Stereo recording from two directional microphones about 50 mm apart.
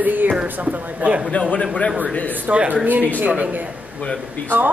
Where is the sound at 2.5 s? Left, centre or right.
Right.